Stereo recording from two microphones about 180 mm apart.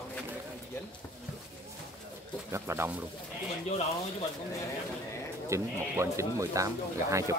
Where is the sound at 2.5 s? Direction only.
15° right (ahead or behind).